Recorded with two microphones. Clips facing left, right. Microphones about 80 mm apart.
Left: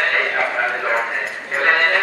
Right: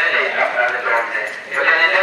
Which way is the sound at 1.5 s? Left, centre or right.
Centre.